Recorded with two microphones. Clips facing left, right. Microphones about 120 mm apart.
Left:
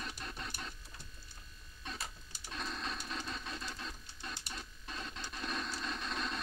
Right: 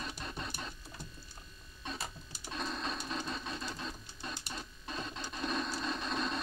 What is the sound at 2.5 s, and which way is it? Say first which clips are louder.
Printer: right 3 dB; 30° right (ahead or behind).